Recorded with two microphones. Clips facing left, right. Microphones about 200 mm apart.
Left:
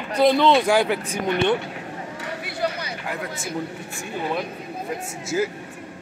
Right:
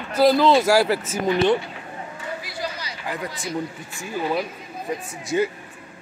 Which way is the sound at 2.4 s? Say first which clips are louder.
Left 5 dB; 60° left (ahead or behind).